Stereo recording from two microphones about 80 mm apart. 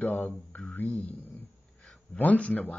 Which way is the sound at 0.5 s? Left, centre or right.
Left.